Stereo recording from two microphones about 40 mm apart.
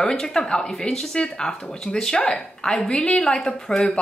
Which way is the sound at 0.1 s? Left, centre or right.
Centre.